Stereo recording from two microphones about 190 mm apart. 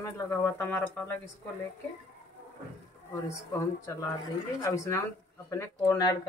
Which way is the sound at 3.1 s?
15° left (ahead or behind).